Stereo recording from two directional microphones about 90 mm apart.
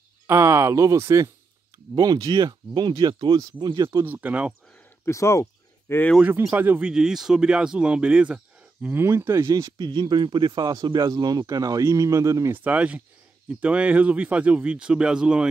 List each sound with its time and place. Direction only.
0.3 s speech: 30° right (ahead or behind)
2.0 s speech: 45° right (ahead or behind)
4.0 s speech: 20° right (ahead or behind)
5.0 s a sound: 30° left (ahead or behind)
6.5 s speech: 25° right (ahead or behind)
6.8 s speech: 10° right (ahead or behind)
8.8 s speech: 25° right (ahead or behind)
12.5 s speech: 15° right (ahead or behind)